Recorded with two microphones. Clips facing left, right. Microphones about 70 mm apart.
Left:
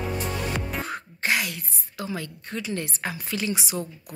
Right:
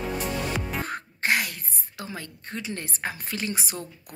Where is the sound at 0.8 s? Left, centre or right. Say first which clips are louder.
Right 1 dB; right.